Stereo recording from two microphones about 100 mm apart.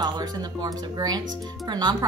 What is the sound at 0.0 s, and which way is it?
Speech, 40° right (ahead or behind).